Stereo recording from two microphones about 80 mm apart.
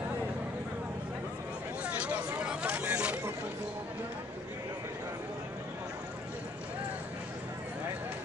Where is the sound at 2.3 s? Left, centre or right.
Centre.